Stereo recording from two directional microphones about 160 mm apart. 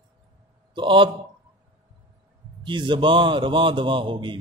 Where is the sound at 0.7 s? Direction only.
30° right (ahead or behind).